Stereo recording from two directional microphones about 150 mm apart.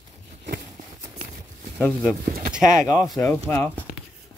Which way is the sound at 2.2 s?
80° right.